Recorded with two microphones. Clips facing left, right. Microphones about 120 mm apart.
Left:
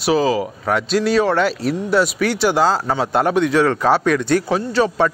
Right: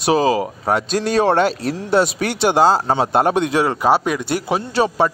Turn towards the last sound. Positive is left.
turn(degrees=-15)  # may be behind; listen again after turning